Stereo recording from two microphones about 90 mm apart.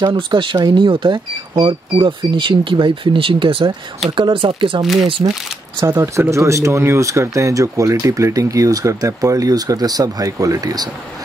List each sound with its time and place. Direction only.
0.0 s speech: 65° right (ahead or behind)
5.9 s speech: 35° right (ahead or behind)